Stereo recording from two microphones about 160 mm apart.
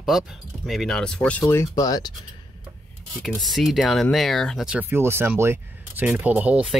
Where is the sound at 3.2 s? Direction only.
Centre (ahead or behind).